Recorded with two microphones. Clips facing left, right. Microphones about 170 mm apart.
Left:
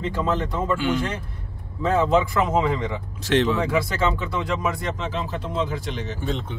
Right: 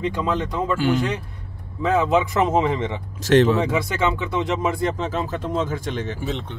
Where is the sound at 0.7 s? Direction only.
40° right (ahead or behind).